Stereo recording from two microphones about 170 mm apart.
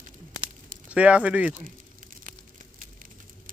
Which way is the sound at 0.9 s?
5° right (ahead or behind).